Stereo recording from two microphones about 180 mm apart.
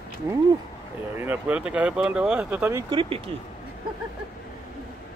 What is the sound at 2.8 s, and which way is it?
Speech, 30° right (ahead or behind).